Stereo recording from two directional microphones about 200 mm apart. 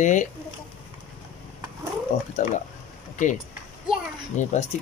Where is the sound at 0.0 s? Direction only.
40° left (ahead or behind).